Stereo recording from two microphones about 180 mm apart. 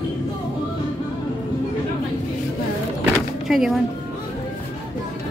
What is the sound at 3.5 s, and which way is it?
Speech, centre (ahead or behind).